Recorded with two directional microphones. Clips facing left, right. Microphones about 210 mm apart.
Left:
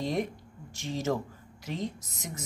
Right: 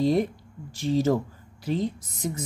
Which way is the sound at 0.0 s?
35° right (ahead or behind).